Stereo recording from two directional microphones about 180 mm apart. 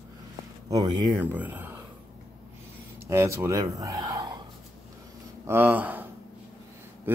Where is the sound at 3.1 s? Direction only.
15° right (ahead or behind).